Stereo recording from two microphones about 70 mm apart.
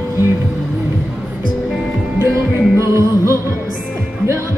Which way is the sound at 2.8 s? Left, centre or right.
Right.